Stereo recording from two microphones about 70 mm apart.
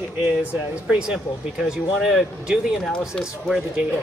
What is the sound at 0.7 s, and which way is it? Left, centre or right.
Speech, centre.